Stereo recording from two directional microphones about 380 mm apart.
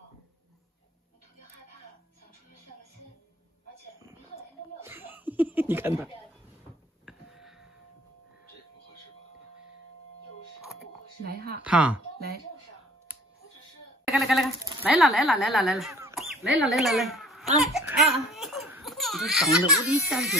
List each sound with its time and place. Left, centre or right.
4.7 s chuckle: centre
7.1 s a sound: centre
11.2 s a sound: right
11.6 s speech: centre
14.1 s speech: centre
18.3 s crying: centre